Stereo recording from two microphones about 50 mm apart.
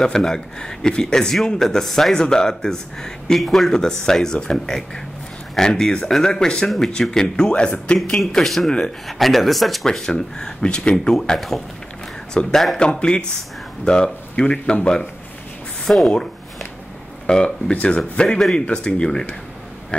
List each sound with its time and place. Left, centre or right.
0.0 s speech: centre
8.3 s speech: centre
11.3 s speech: centre
12.4 s speech: centre
13.8 s speech: centre
17.3 s speech: centre